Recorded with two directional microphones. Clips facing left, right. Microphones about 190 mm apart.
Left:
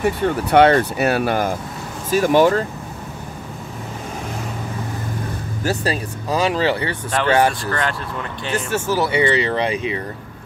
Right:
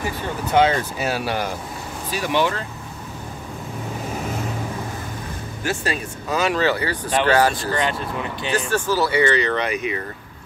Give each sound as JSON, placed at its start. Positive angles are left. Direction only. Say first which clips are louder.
{"t": 0.0, "sound": "speech", "louder": "left 7 dB", "side_deg": 65}
{"t": 5.6, "sound": "speech", "louder": "left 3 dB", "side_deg": 35}
{"t": 7.7, "sound": "speech", "louder": "right 1 dB", "side_deg": -20}
{"t": 8.5, "sound": "speech", "louder": "even", "side_deg": 25}